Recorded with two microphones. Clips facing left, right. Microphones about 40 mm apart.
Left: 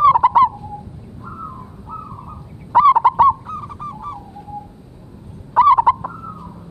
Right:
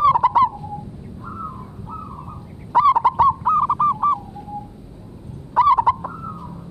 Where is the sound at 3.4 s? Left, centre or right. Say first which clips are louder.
Right 13 dB; right.